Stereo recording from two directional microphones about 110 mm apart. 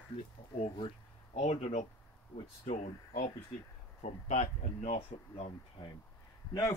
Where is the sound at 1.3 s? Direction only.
85° left.